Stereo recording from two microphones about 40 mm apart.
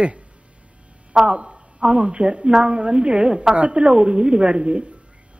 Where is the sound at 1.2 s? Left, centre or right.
Right.